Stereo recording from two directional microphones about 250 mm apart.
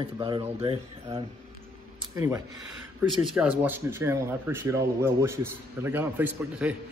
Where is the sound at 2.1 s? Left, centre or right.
Centre.